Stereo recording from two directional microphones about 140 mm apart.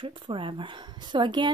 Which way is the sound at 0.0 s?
35° right (ahead or behind).